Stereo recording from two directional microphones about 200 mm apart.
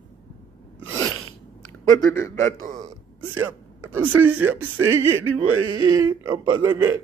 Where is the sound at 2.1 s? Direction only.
15° left (ahead or behind).